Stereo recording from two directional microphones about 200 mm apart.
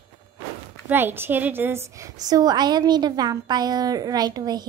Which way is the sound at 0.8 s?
10° right (ahead or behind).